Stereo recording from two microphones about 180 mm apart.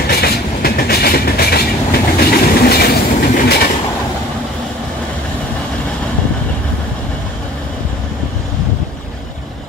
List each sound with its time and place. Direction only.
0.0 s train: 60° left (ahead or behind)